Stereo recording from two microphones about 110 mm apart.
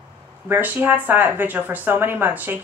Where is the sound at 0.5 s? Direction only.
15° right (ahead or behind).